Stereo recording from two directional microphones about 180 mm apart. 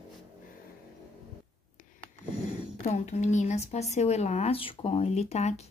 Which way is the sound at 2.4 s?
40° left (ahead or behind).